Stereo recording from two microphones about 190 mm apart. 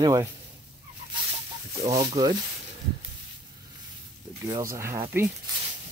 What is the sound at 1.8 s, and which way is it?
Speech, 20° right (ahead or behind).